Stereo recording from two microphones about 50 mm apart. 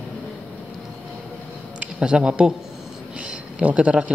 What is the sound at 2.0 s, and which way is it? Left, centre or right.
Speech, centre.